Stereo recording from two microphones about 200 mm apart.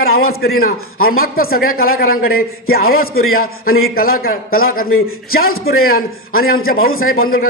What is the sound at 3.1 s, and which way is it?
Speech, 90° left.